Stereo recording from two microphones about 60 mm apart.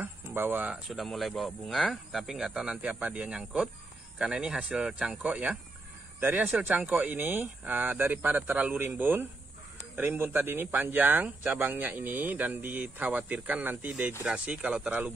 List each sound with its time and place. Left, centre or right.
0.0 s a sound: right
0.8 s speech: centre
5.2 s speech: right
6.1 s a man's voice: right
6.7 s speech: right